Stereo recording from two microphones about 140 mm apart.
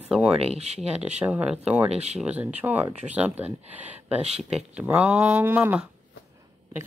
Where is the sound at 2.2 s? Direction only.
10° right (ahead or behind).